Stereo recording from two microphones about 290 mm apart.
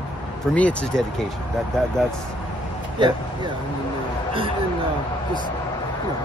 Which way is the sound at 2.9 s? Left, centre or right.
Centre.